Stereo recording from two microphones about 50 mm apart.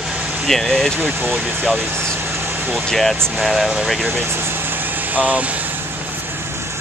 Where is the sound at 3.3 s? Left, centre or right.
Centre.